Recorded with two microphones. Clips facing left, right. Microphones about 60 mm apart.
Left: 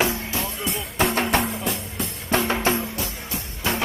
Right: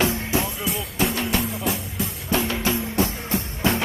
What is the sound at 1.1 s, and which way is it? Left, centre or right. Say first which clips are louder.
Music: left 3 dB; left.